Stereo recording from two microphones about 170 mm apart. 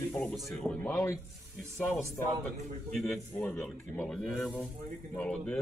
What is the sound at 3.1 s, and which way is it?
Speech, 10° left (ahead or behind).